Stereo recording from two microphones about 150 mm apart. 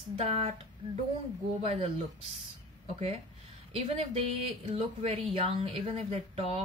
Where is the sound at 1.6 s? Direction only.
40° right (ahead or behind).